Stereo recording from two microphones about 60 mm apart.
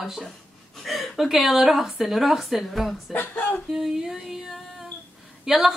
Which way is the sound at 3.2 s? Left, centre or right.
Left.